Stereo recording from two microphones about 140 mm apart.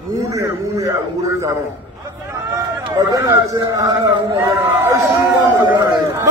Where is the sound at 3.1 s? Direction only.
25° right (ahead or behind).